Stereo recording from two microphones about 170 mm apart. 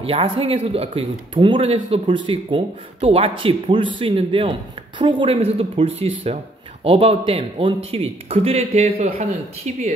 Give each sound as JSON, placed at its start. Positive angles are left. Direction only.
{"t": 0.0, "sound": "speech", "side_deg": -35}